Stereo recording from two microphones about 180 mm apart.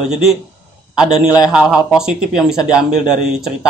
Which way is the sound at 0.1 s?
5° right (ahead or behind).